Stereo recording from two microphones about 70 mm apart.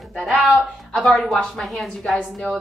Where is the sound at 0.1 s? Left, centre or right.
Centre.